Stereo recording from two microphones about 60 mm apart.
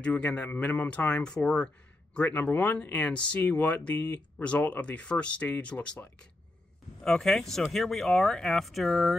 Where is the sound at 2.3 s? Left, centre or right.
Left.